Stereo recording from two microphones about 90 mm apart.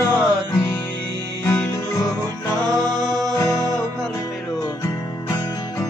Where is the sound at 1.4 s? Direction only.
30° left (ahead or behind).